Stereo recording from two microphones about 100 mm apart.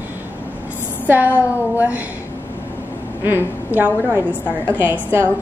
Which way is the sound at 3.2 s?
20° right (ahead or behind).